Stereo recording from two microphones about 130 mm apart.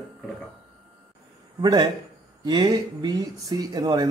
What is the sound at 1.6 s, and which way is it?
A man's voice, 35° right (ahead or behind).